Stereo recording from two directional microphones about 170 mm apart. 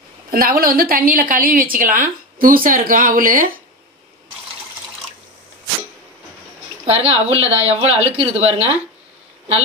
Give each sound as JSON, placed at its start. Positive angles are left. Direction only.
{"t": 0.3, "sound": "a woman's voice", "side_deg": -60}
{"t": 6.9, "sound": "speech", "side_deg": -35}